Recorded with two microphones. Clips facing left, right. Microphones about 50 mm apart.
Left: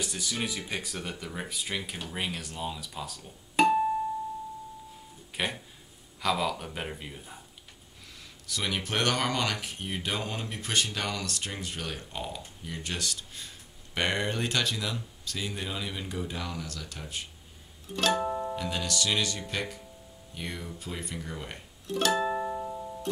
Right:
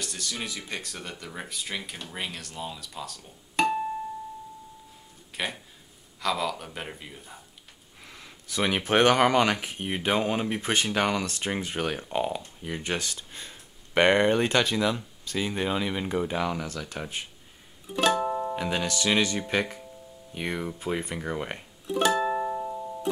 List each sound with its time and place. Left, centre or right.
0.0 s speech: centre
5.3 s speech: centre
8.0 s speech: right
17.8 s music: centre
18.6 s speech: right
20.3 s speech: right
21.8 s music: centre